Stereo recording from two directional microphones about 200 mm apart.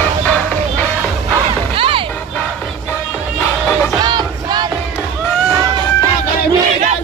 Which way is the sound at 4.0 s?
20° right (ahead or behind).